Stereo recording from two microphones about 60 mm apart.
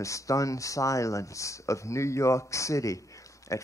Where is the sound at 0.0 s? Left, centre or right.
Left.